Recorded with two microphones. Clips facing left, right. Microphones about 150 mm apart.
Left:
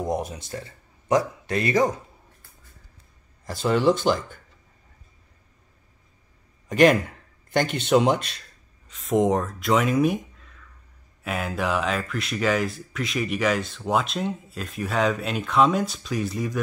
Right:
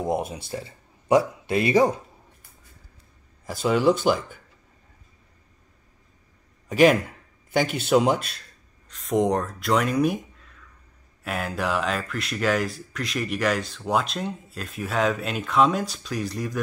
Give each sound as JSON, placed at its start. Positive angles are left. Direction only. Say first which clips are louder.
{"t": 0.1, "sound": "speech", "louder": "right 1 dB", "side_deg": -25}
{"t": 3.4, "sound": "speech", "louder": "even", "side_deg": -5}
{"t": 6.7, "sound": "a man's voice", "louder": "even", "side_deg": -5}